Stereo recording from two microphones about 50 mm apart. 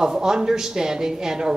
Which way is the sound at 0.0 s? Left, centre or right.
Centre.